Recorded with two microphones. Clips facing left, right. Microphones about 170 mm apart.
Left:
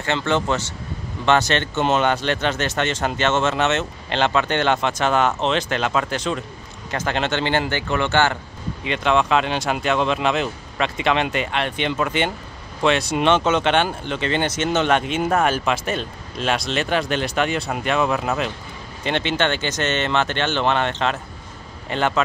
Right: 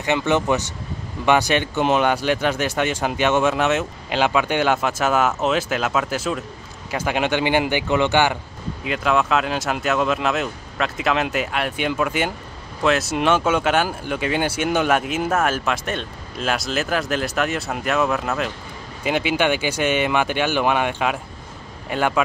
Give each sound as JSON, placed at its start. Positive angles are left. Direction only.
{"t": 0.0, "sound": "speech", "side_deg": -15}
{"t": 8.8, "sound": "speech", "side_deg": -5}